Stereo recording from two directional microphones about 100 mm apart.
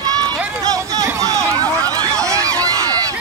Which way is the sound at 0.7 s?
35° right (ahead or behind).